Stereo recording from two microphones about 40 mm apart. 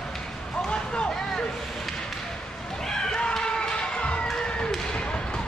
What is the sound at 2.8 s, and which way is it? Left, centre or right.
Run, centre.